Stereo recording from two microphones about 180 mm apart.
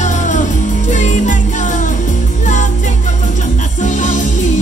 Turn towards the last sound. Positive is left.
turn(degrees=45)  # may be behind; listen again after turning